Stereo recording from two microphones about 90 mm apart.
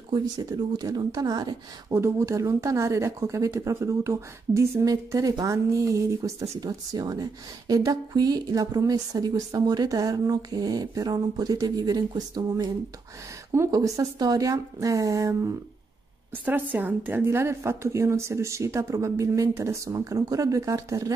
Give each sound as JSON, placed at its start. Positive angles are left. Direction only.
{"t": 0.1, "sound": "speech", "side_deg": -50}
{"t": 1.9, "sound": "a woman's voice", "side_deg": -30}
{"t": 16.4, "sound": "a woman's voice", "side_deg": -20}